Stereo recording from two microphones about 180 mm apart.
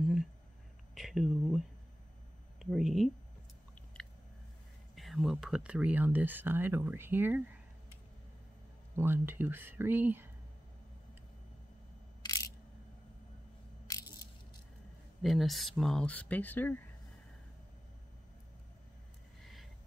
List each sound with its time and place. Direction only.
0.0 s a sound: 5° right (ahead or behind)
0.9 s speech: centre (ahead or behind)
2.6 s speech: centre (ahead or behind)
4.9 s speech: centre (ahead or behind)
8.9 s speech: 10° right (ahead or behind)
12.2 s single-lens reflex camera: 20° left (ahead or behind)
13.8 s coin: 20° left (ahead or behind)
15.2 s speech: centre (ahead or behind)
19.4 s a sound: centre (ahead or behind)